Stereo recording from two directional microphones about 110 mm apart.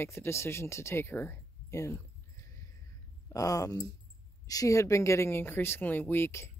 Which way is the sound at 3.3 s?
30° left (ahead or behind).